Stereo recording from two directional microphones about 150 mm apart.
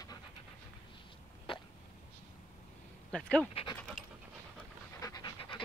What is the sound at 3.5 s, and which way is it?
Dog, 40° left (ahead or behind).